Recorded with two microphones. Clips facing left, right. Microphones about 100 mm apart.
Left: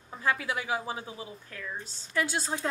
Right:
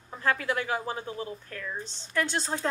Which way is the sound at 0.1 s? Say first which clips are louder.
Right 2 dB; 10° left (ahead or behind).